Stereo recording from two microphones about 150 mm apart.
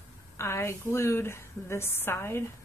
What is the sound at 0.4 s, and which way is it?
A woman's voice, 15° left (ahead or behind).